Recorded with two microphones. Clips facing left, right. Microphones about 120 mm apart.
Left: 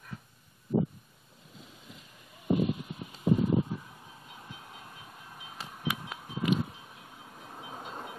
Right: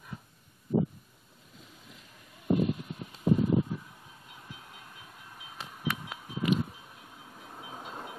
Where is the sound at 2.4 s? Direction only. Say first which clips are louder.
Right 1 dB; 5° left (ahead or behind).